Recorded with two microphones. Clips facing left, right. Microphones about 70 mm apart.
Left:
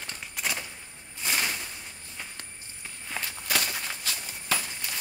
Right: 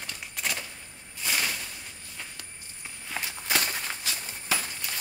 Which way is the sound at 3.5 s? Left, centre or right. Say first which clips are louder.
Right 1 dB; right.